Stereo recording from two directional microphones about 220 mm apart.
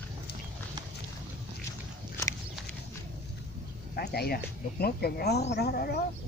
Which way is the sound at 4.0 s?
45° left (ahead or behind).